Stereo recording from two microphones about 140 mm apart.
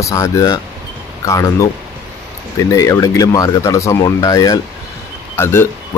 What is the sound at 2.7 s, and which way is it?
Speech, 20° left (ahead or behind).